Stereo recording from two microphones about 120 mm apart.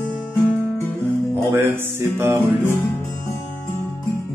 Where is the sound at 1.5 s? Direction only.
20° right (ahead or behind).